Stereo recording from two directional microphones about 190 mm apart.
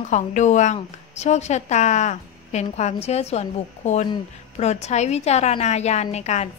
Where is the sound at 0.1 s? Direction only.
40° left (ahead or behind).